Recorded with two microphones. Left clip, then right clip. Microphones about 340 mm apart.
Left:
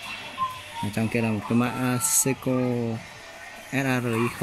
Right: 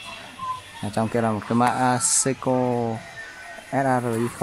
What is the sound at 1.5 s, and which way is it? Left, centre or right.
Speech, right.